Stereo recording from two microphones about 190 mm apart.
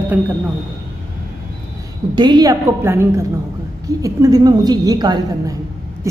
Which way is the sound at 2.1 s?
25° right (ahead or behind).